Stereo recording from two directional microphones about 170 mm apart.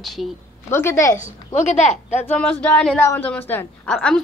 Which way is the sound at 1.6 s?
40° left (ahead or behind).